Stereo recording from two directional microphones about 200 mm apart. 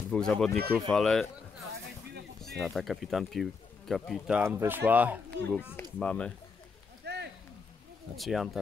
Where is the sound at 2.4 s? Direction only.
Centre (ahead or behind).